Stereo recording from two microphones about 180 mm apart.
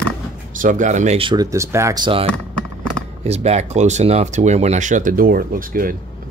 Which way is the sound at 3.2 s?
35° right (ahead or behind).